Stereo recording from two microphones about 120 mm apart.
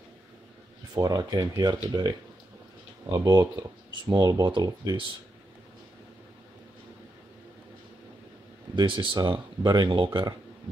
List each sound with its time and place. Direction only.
0.9 s speech: 30° right (ahead or behind)
8.7 s speech: 40° right (ahead or behind)